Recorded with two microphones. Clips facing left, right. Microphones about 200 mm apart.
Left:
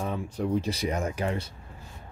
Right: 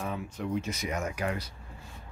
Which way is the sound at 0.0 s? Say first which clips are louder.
Left 4 dB; 35° left (ahead or behind).